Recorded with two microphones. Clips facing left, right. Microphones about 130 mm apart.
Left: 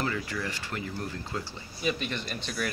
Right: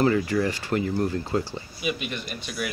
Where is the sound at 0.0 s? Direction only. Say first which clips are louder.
Right 10 dB; 45° right (ahead or behind).